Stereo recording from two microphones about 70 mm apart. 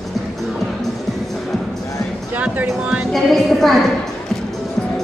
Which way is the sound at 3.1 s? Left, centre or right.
Centre.